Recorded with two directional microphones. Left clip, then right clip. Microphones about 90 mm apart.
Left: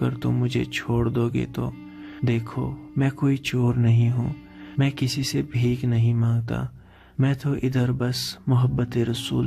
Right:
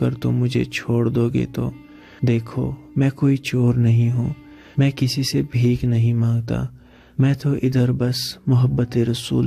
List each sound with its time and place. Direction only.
0.0 s speech: 25° right (ahead or behind)
4.7 s speech: 30° right (ahead or behind)